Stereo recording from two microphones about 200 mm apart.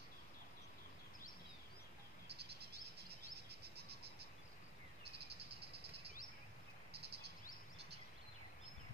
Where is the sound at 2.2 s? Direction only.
55° right (ahead or behind).